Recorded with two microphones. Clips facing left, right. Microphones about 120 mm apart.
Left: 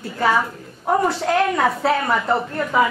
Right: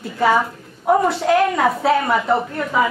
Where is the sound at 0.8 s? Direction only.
5° right (ahead or behind).